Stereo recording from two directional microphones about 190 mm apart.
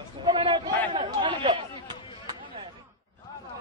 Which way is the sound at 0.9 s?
25° right (ahead or behind).